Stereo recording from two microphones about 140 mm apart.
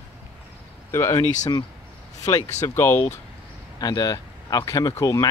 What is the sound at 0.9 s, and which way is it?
Speech, 20° left (ahead or behind).